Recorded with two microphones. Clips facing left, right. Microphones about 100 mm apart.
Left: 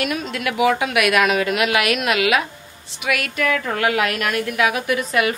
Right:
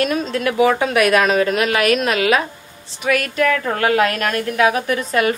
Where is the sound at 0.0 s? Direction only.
35° right (ahead or behind).